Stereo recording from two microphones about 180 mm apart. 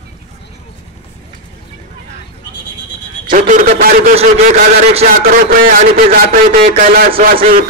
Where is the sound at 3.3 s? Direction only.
50° right (ahead or behind).